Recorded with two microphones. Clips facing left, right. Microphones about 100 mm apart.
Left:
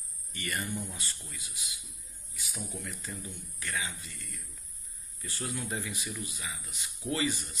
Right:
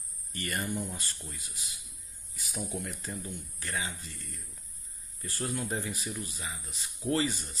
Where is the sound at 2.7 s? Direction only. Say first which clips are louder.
Right 4 dB; 50° right (ahead or behind).